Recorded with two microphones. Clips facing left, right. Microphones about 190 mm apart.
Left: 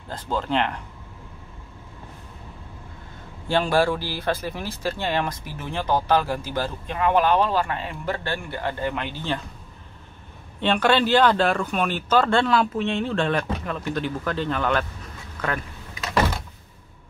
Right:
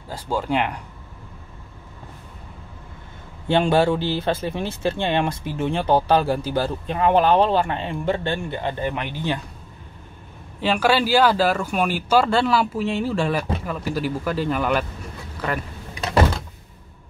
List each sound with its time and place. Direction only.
0.1 s speech: 10° right (ahead or behind)
3.4 s speech: 25° right (ahead or behind)
10.6 s speech: 5° right (ahead or behind)
15.3 s vehicle: 5° right (ahead or behind)